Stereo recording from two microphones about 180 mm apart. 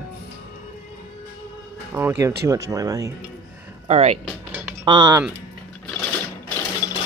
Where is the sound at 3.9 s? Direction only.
35° right (ahead or behind).